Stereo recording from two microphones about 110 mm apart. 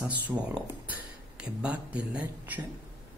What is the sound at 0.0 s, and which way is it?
Speech, 15° right (ahead or behind).